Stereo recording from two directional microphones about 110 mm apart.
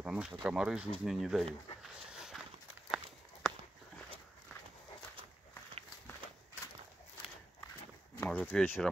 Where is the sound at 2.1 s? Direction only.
5° right (ahead or behind).